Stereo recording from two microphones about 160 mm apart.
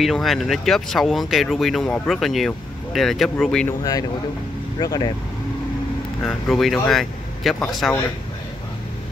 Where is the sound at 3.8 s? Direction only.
25° left (ahead or behind).